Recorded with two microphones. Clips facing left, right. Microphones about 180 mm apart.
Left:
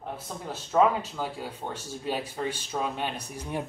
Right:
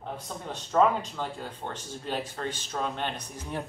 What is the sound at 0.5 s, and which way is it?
Speech, 5° left (ahead or behind).